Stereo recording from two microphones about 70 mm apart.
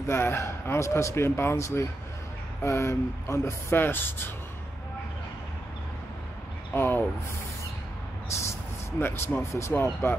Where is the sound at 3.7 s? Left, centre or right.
Left.